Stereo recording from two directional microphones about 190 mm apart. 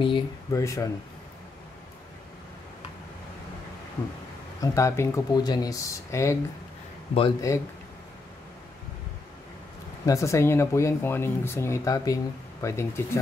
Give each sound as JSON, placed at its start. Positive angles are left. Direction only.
{"t": 0.0, "sound": "speech", "side_deg": 20}
{"t": 4.6, "sound": "speech", "side_deg": 15}
{"t": 10.0, "sound": "speech", "side_deg": 15}